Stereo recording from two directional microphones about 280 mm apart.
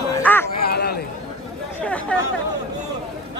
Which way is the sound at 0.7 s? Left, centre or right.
Left.